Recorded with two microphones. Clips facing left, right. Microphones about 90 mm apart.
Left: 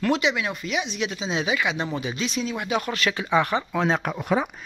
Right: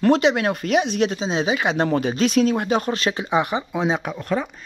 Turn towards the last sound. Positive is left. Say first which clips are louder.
# even
turn(degrees=10)  # may be behind; listen again after turning